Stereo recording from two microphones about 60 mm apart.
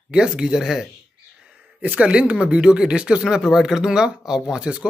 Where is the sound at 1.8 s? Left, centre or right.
Right.